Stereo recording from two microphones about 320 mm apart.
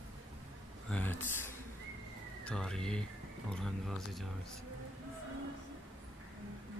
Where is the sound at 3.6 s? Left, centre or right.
Centre.